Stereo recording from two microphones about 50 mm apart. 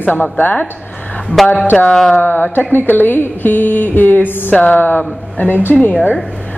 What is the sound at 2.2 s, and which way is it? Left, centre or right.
Speech, left.